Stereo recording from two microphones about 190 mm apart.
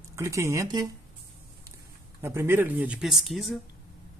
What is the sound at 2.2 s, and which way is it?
Speech, 15° right (ahead or behind).